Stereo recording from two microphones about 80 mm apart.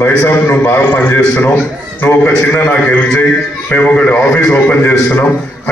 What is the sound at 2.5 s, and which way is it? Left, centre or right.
A man's voice, left.